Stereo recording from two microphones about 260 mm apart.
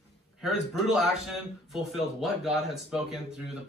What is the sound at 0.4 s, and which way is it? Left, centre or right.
Speech, centre.